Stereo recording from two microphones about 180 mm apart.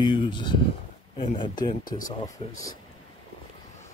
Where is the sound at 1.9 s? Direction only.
50° left (ahead or behind).